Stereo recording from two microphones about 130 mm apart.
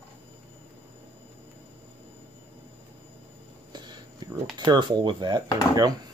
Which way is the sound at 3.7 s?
35° right (ahead or behind).